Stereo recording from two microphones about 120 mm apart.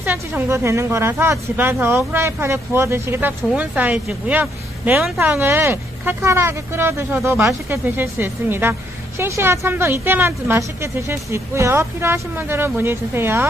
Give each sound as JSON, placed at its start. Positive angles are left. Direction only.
{"t": 0.0, "sound": "speech", "side_deg": -20}